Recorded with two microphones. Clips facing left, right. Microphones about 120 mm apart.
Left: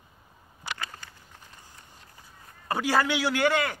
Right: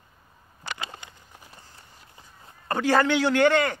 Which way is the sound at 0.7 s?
20° right (ahead or behind).